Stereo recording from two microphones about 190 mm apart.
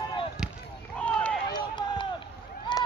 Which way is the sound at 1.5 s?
25° left (ahead or behind).